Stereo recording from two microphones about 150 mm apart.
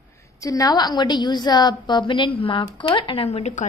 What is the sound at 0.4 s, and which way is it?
A woman's voice, 25° left (ahead or behind).